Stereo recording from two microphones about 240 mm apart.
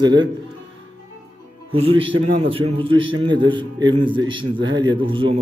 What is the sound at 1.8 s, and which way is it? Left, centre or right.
A man's voice, right.